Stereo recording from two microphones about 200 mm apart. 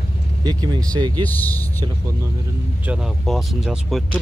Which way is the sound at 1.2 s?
10° left (ahead or behind).